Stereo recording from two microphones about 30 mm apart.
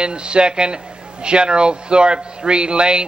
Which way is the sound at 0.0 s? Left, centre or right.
Right.